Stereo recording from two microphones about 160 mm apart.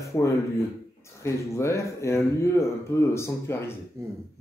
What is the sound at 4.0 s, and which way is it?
Speech, 20° right (ahead or behind).